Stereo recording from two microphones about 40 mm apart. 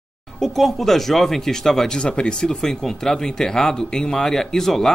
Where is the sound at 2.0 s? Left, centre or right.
Left.